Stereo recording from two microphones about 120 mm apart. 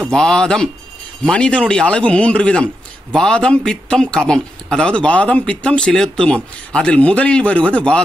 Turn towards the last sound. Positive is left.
turn(degrees=10)  # may be behind; listen again after turning